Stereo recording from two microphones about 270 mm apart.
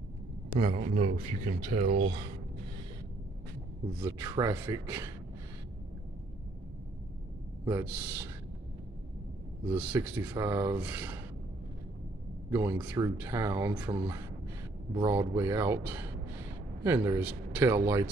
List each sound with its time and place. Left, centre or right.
0.6 s speech: right
4.0 s speech: centre
7.6 s speech: centre
9.7 s speech: centre
12.4 s speech: centre